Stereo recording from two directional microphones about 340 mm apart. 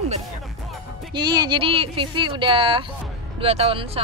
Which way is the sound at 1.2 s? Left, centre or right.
Centre.